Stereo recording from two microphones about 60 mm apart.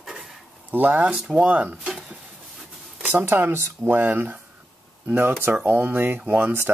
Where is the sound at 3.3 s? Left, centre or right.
Right.